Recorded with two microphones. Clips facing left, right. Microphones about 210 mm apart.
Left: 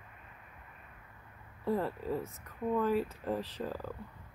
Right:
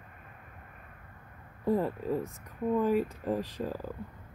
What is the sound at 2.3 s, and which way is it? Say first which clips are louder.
Speech: right 3 dB; 15° right (ahead or behind).